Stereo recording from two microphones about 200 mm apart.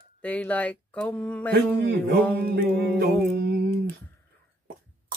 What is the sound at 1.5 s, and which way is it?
Speech, 50° right (ahead or behind).